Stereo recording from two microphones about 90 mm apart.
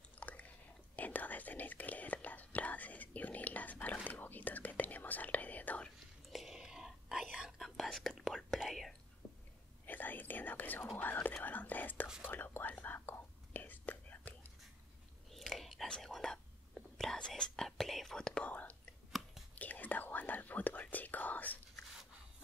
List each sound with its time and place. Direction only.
0.2 s chewing: 15° left (ahead or behind)
0.9 s whispering: 20° left (ahead or behind)
6.3 s whispering: 5° right (ahead or behind)
9.2 s a sound: 5° right (ahead or behind)
9.8 s whispering: 20° left (ahead or behind)
15.3 s whispering: centre (ahead or behind); by 21.5 s 20° left (ahead or behind)